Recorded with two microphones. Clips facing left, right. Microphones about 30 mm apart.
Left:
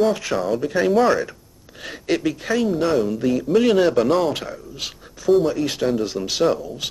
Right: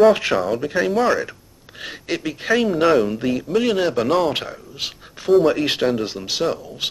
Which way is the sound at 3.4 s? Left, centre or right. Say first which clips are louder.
Left 4 dB; centre.